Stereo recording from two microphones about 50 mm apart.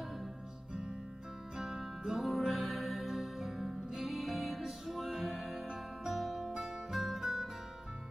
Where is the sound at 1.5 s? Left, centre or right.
Centre.